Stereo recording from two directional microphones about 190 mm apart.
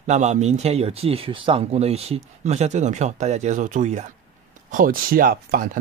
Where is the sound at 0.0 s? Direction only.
35° right (ahead or behind).